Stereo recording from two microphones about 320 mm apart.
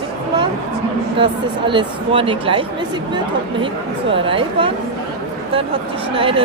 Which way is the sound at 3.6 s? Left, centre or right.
Centre.